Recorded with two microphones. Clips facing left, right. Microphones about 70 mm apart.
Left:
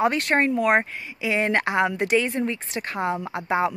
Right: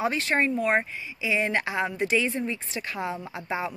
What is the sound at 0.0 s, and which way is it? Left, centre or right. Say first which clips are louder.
Speech: left 4 dB; left.